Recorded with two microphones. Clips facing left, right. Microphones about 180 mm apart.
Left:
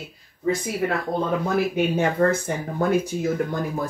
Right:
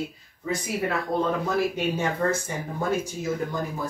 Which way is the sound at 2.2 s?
55° left (ahead or behind).